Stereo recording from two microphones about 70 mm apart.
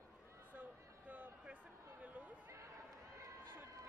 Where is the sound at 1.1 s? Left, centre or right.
Right.